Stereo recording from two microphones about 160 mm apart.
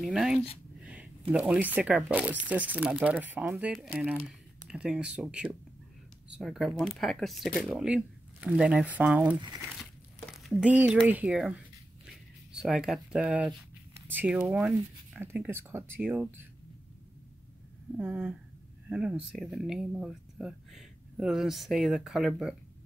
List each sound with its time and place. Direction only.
0.0 s a sound: centre (ahead or behind)
0.8 s speech: 10° right (ahead or behind)
9.4 s speech: 25° right (ahead or behind)
10.2 s speech: centre (ahead or behind)
12.5 s speech: 5° right (ahead or behind)
17.9 s speech: 10° right (ahead or behind)